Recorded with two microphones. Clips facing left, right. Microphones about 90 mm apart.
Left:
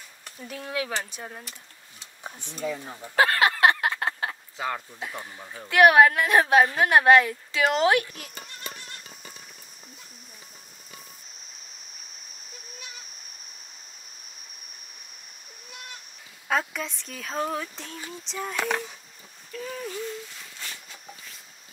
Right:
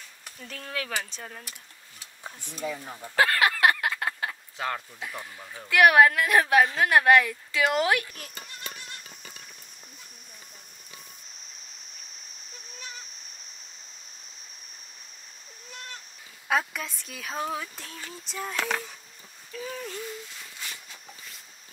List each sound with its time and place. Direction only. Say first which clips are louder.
0.4 s speech: left 4 dB; 10° left (ahead or behind)
2.5 s speech: left 2 dB; centre (ahead or behind)
3.2 s a sound: left 2 dB; 25° left (ahead or behind)
4.6 s speech: left 1 dB; 5° left (ahead or behind)
5.0 s a woman's voice: left 2 dB; 20° left (ahead or behind)
12.7 s splash: right 3 dB; 35° right (ahead or behind)
16.4 s speech: even; 5° right (ahead or behind)
19.5 s a sound: left 2 dB; centre (ahead or behind)